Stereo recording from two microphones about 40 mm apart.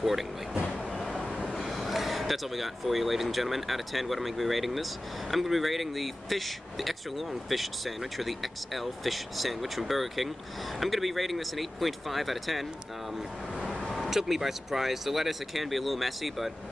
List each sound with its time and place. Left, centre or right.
1.2 s train: left
1.7 s speech: centre
13.6 s vehicle: right
14.0 s speech: centre